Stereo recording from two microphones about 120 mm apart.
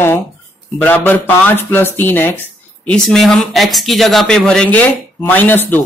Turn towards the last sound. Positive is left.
turn(degrees=15)  # may be behind; listen again after turning